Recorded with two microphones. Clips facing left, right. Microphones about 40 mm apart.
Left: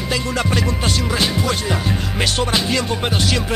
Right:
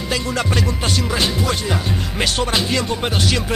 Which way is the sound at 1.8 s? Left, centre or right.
Centre.